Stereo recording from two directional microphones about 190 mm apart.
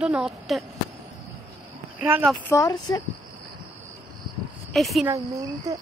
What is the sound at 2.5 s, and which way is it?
Speech, 20° left (ahead or behind).